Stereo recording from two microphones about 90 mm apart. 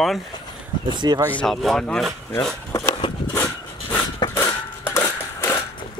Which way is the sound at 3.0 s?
65° left (ahead or behind).